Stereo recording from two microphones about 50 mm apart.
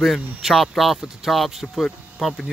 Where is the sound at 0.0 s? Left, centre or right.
Centre.